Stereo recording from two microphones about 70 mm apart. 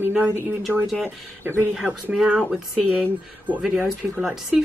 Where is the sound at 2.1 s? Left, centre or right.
Centre.